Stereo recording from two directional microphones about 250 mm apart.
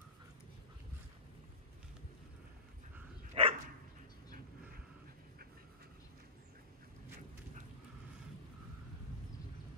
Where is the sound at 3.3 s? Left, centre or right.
Right.